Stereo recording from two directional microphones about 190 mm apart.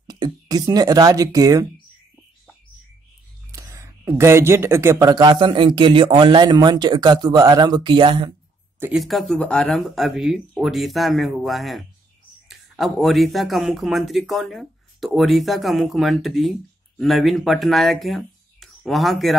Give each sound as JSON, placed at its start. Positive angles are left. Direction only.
{"t": 0.0, "sound": "speech", "side_deg": -20}
{"t": 3.5, "sound": "speech", "side_deg": -15}
{"t": 8.7, "sound": "speech", "side_deg": -5}